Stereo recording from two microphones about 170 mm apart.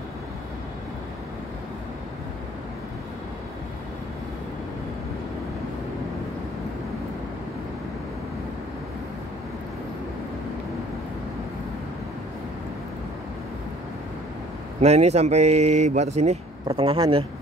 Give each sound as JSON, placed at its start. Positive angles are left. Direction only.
{"t": 14.8, "sound": "speech", "side_deg": -40}